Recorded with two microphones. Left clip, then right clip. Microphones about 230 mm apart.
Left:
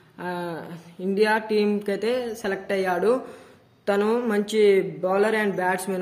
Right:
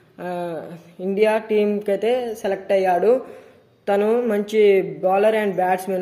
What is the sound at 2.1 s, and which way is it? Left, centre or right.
Speech, left.